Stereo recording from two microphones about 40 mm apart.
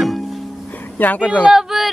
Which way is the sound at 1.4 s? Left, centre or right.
Centre.